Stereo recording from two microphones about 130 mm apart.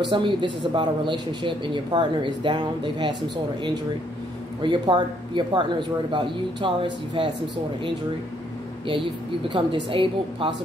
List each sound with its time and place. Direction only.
0.0 s speech: 40° right (ahead or behind)
4.6 s speech: 35° right (ahead or behind)
9.5 s speech: 40° right (ahead or behind)